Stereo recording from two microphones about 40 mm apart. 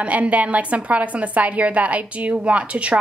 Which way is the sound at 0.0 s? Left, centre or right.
Right.